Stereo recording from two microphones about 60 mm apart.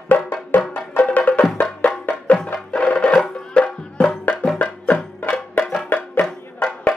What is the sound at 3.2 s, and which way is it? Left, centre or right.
Music, centre.